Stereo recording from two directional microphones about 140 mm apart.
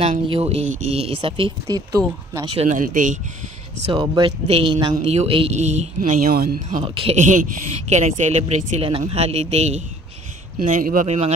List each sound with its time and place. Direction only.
0.0 s speech: 45° right (ahead or behind)
1.9 s speech: 25° right (ahead or behind)
2.5 s speech: 50° right (ahead or behind)
2.8 s speech: 70° right (ahead or behind)
3.9 s speech: 35° right (ahead or behind)
5.0 s speech: 45° right (ahead or behind)
5.9 s speech: 85° right
6.8 s speech: 40° right (ahead or behind)
7.2 s speech: 65° right (ahead or behind)
10.6 s speech: 75° right (ahead or behind)
11.1 s speech: 50° right (ahead or behind)